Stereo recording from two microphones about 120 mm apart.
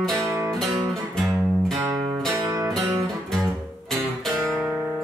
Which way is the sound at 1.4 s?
Centre (ahead or behind).